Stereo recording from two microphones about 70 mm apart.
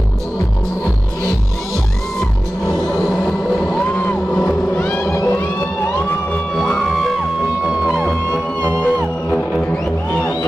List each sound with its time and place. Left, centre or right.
3.0 s music: centre
6.5 s music: centre
7.6 s music: centre
8.6 s music: left